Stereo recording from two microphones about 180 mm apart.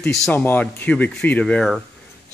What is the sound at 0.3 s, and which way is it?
Speech, 10° left (ahead or behind).